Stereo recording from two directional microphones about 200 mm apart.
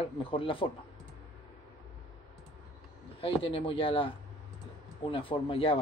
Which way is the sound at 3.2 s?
25° left (ahead or behind).